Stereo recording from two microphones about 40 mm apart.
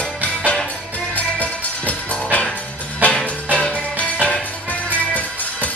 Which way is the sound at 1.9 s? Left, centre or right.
Left.